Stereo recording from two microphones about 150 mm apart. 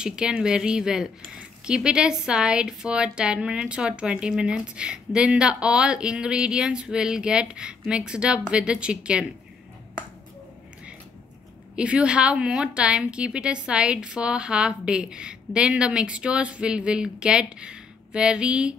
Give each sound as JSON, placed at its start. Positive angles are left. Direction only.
{"t": 0.0, "sound": "speech", "side_deg": -5}
{"t": 11.7, "sound": "speech", "side_deg": -5}